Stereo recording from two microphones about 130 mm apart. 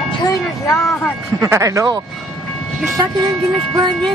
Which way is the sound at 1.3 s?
20° right (ahead or behind).